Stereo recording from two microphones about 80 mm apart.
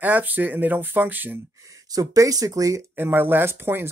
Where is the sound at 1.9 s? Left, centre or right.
Right.